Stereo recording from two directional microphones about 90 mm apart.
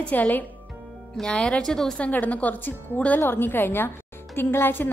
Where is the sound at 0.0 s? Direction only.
20° left (ahead or behind).